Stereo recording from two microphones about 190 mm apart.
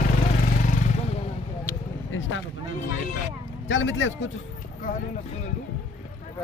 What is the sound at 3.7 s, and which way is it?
Speech, 80° left.